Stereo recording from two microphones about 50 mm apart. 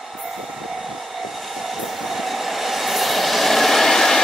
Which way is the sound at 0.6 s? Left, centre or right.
Centre.